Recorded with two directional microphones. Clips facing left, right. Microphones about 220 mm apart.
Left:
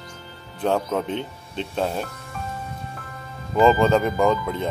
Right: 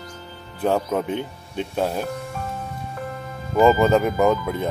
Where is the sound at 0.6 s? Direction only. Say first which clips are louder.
Right 1 dB; 5° right (ahead or behind).